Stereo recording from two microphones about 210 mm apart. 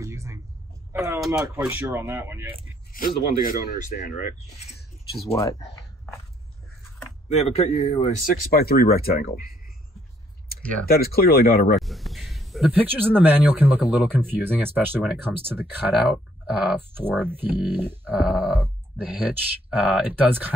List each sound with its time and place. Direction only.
0.0 s a sound: 15° right (ahead or behind)
1.4 s speech: 10° right (ahead or behind)
2.9 s speech: 40° left (ahead or behind)
5.4 s speech: 20° left (ahead or behind)
7.2 s speech: 30° left (ahead or behind)
8.5 s speech: 45° left (ahead or behind)
10.6 s speech: 5° left (ahead or behind)
10.9 s speech: 45° left (ahead or behind)
11.7 s speech: centre (ahead or behind)
19.8 s speech: 10° right (ahead or behind)